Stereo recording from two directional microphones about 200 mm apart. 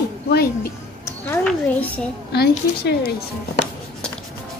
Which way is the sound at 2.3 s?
55° left (ahead or behind).